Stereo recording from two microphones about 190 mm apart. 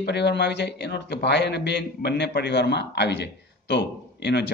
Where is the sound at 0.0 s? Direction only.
65° left (ahead or behind).